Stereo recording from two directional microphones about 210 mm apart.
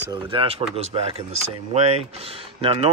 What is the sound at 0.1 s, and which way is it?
Speech, 25° right (ahead or behind).